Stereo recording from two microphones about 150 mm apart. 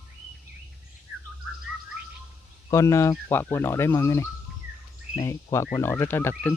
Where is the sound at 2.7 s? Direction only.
20° left (ahead or behind).